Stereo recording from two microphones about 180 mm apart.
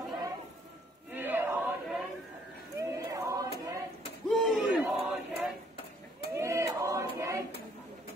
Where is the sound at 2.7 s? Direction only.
15° right (ahead or behind).